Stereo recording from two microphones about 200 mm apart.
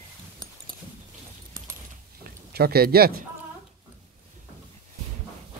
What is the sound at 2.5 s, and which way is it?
Speech, 50° right (ahead or behind).